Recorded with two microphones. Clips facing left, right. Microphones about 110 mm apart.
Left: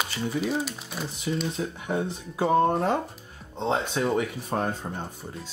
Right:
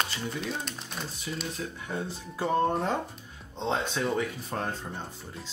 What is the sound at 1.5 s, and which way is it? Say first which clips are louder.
Speech: left 6 dB; 20° left (ahead or behind).